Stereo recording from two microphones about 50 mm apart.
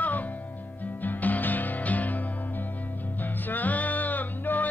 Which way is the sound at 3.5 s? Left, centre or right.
Left.